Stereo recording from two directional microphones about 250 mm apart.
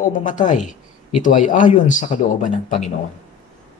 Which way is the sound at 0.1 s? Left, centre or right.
Left.